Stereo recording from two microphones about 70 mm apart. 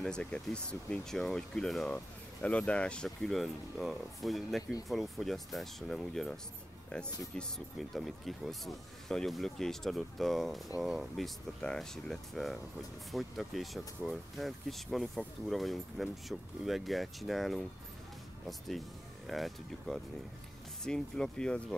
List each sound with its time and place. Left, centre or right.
0.0 s speech: centre
2.4 s speech: centre
3.2 s speech: centre
7.3 s speech: centre